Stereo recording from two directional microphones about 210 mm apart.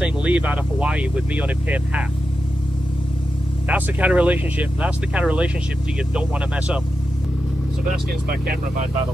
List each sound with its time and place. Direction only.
0.0 s speech: 5° right (ahead or behind)
3.6 s speech: 5° right (ahead or behind)
8.3 s speech: 45° right (ahead or behind)